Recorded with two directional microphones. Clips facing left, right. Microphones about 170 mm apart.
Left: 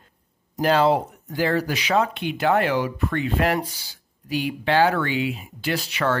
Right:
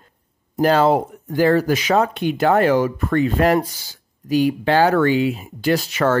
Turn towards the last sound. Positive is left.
turn(degrees=-45)  # may be behind; listen again after turning